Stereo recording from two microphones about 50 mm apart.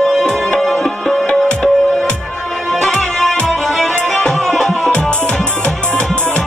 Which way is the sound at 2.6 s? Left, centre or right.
Centre.